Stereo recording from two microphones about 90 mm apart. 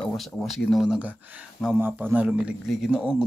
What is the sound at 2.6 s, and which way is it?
Speech, 5° right (ahead or behind).